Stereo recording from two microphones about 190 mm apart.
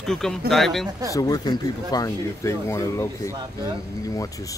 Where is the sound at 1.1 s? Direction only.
20° left (ahead or behind).